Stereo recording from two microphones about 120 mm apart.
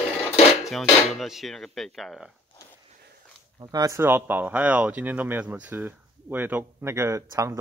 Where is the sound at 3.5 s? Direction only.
30° right (ahead or behind).